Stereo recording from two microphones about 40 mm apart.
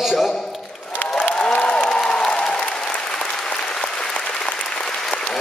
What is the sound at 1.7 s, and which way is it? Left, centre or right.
Applause, centre.